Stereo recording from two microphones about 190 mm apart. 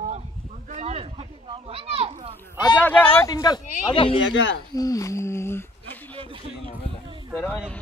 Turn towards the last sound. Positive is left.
turn(degrees=10)  # may be behind; listen again after turning